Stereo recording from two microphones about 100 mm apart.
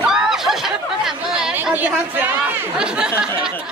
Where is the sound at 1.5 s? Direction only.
20° right (ahead or behind).